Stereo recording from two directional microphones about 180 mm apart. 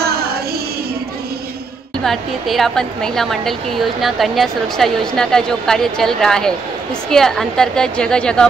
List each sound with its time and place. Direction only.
0.0 s music: 60° right (ahead or behind)
2.0 s a woman's voice: centre (ahead or behind)